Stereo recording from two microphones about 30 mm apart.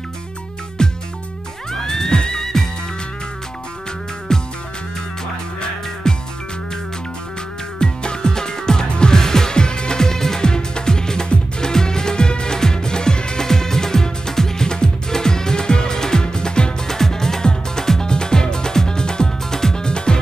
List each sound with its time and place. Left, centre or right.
0.8 s music: left
2.4 s music: centre
4.3 s music: left
6.0 s music: left
7.8 s music: left
13.5 s music: centre
16.8 s music: centre